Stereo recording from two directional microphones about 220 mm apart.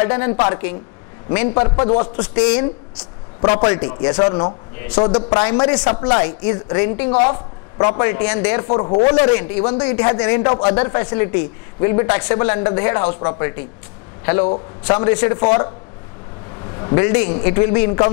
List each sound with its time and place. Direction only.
0.0 s a woman's voice: 20° left (ahead or behind)
3.4 s a woman's voice: 20° left (ahead or behind)
8.0 s speech: 15° left (ahead or behind)
8.6 s a woman's voice: 30° left (ahead or behind)
16.7 s a man's voice: 20° left (ahead or behind)